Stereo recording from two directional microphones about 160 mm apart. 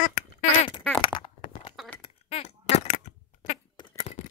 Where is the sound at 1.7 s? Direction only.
Centre (ahead or behind).